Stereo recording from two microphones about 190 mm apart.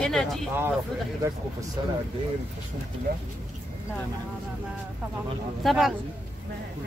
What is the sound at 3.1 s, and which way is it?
Speech, 50° right (ahead or behind).